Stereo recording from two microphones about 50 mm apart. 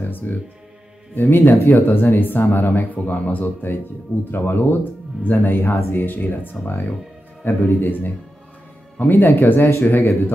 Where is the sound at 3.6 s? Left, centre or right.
Left.